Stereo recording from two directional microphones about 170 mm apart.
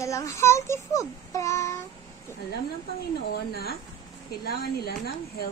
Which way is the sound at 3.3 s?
65° left (ahead or behind).